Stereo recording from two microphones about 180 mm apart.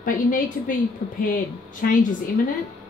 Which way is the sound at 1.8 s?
45° left (ahead or behind).